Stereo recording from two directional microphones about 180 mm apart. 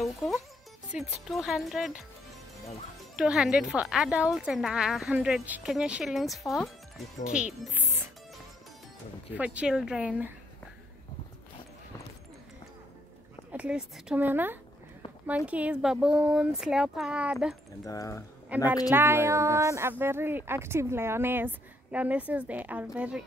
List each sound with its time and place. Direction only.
0.0 s speech: centre (ahead or behind)
3.2 s speech: 5° right (ahead or behind)
7.7 s music: 10° right (ahead or behind)
9.3 s speech: 10° right (ahead or behind)
13.5 s speech: 5° right (ahead or behind)
17.8 s speech: 15° left (ahead or behind)
18.5 s speech: 10° right (ahead or behind)